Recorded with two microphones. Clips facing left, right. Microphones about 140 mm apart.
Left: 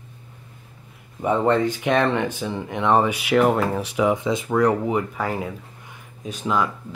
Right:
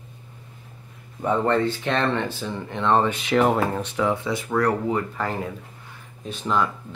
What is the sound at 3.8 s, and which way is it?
Speech, 15° left (ahead or behind).